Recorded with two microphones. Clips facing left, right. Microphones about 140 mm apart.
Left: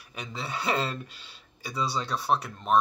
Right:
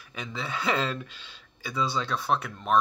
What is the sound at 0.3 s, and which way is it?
Speech, 40° left (ahead or behind).